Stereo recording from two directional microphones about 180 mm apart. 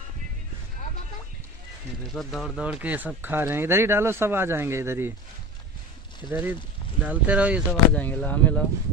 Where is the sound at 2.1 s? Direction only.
Centre (ahead or behind).